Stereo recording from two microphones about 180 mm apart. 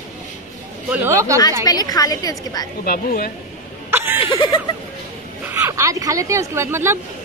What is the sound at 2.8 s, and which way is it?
Speech, 55° left (ahead or behind).